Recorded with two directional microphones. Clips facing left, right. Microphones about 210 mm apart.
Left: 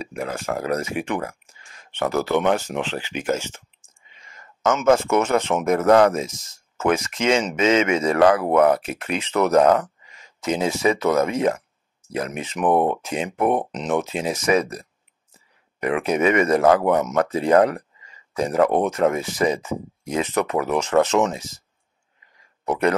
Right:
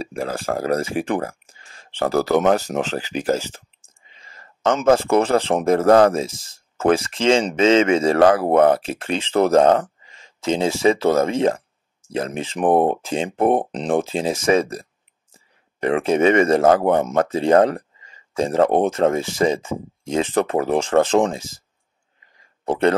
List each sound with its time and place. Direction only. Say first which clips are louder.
0.0 s speech: right 3 dB; 30° right (ahead or behind)
22.7 s speech: right 3 dB; 30° right (ahead or behind)